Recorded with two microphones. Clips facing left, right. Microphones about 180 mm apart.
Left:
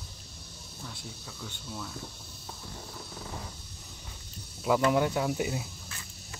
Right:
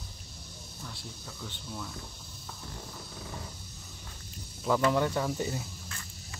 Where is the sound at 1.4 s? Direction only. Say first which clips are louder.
Even; centre (ahead or behind).